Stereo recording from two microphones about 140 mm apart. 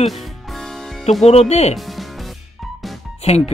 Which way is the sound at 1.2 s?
50° left (ahead or behind).